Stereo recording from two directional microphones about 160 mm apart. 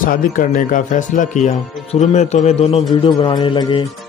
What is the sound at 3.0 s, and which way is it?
Music, 25° left (ahead or behind).